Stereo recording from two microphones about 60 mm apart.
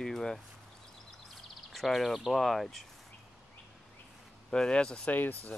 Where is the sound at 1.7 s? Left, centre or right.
Centre.